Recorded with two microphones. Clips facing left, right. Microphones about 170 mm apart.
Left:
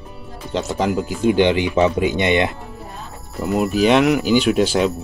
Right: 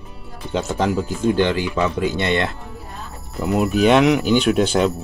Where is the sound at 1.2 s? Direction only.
20° left (ahead or behind).